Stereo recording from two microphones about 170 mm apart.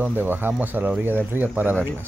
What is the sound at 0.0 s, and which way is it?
Speech, 10° right (ahead or behind).